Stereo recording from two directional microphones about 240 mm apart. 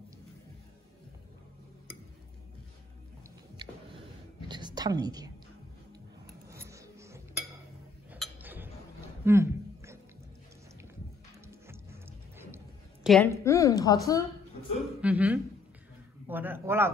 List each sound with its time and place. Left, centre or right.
4.5 s a sound: centre
6.5 s a sound: centre
11.4 s music: centre
13.0 s a woman's voice: centre
13.3 s a woman's voice: centre
15.0 s speech: centre